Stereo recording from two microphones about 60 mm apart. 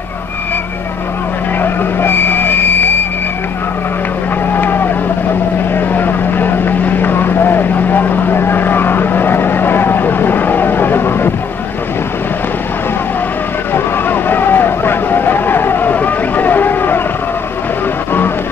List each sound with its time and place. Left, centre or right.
1.6 s vehicle: left
4.6 s vehicle: left
13.7 s vehicle: left